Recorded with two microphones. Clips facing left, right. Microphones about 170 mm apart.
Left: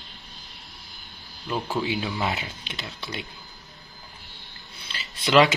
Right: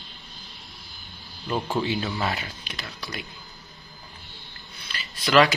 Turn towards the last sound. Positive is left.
turn(degrees=20)  # may be behind; listen again after turning